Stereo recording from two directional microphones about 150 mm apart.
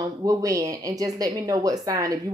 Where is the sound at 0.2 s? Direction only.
25° right (ahead or behind).